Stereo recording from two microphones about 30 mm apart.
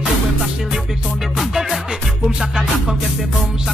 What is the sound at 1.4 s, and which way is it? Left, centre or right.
Music, centre.